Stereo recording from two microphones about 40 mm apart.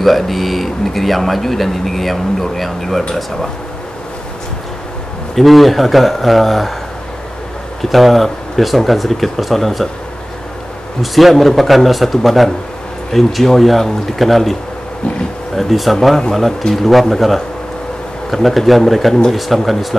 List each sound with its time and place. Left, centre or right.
0.0 s speech: centre
5.3 s speech: centre
7.8 s speech: centre
11.0 s speech: centre